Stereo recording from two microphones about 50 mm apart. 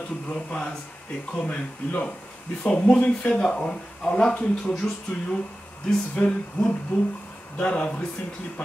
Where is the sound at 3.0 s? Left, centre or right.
Left.